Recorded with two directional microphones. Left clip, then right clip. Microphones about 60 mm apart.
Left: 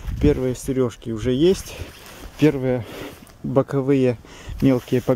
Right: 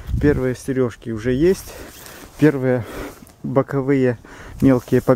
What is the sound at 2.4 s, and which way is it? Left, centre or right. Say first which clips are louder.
Speech: right 3 dB; right.